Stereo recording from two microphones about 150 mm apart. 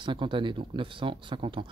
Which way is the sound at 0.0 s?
35° right (ahead or behind).